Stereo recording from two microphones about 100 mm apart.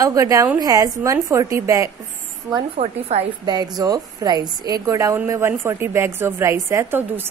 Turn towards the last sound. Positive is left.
turn(degrees=-20)  # may be behind; listen again after turning